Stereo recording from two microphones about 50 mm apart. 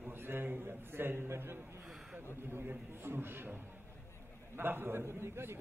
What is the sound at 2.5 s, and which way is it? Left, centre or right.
A man's voice, right.